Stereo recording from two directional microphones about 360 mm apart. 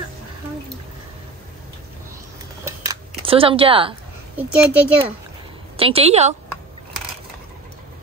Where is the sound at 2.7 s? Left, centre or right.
Centre.